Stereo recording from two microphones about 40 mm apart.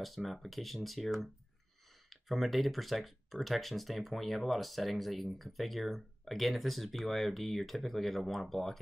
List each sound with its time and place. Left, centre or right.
0.0 s speech: centre